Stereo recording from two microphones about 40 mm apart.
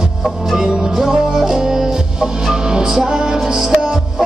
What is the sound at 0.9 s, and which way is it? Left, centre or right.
Music, centre.